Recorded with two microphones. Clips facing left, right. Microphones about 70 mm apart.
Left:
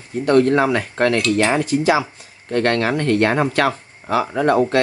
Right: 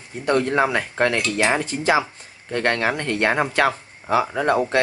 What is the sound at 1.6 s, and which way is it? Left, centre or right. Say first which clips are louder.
Speech: left 3 dB; right.